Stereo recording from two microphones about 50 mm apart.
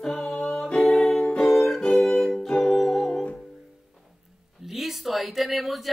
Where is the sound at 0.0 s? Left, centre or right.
Centre.